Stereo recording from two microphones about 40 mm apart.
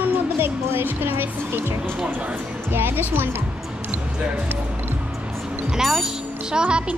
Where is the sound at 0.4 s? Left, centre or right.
Right.